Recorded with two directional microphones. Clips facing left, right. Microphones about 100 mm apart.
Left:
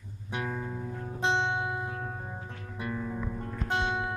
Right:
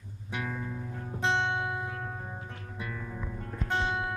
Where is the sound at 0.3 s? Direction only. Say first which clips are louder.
Left 2 dB; 20° left (ahead or behind).